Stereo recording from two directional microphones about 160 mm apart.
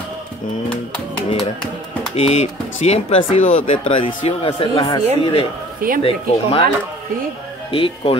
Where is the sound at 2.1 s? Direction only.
40° left (ahead or behind).